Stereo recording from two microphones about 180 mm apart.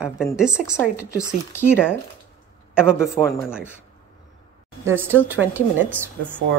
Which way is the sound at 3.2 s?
15° left (ahead or behind).